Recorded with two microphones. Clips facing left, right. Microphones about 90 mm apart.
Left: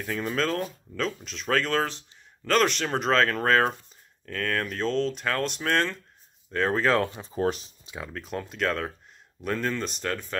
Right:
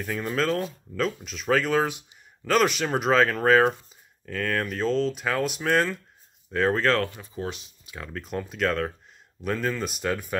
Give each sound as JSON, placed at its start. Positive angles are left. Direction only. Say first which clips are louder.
{"t": 0.0, "sound": "speech", "louder": "right 1 dB", "side_deg": -5}
{"t": 7.0, "sound": "speech", "louder": "left 1 dB", "side_deg": 25}
{"t": 7.3, "sound": "speech", "louder": "left 7 dB", "side_deg": 40}
{"t": 8.0, "sound": "speech", "louder": "right 1 dB", "side_deg": 0}